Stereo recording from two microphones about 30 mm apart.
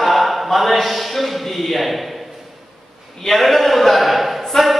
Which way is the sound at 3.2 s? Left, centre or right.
Centre.